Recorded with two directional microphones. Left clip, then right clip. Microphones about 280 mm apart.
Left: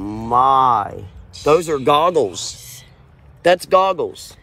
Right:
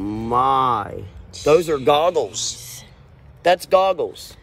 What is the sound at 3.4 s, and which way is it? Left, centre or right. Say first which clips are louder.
Speech: left 2 dB; left.